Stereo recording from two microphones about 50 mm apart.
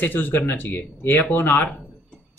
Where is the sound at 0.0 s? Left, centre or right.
Left.